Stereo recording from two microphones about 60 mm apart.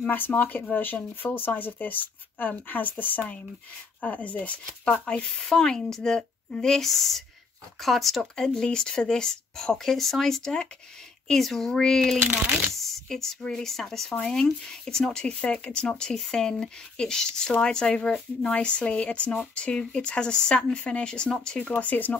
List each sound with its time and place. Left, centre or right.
0.0 s speech: left
5.2 s speech: centre
12.2 s speech: right
12.7 s speech: centre; by 22.2 s left